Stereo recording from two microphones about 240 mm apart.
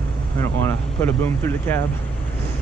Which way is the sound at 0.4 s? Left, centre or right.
Centre.